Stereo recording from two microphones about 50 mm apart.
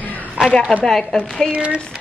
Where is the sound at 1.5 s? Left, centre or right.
Right.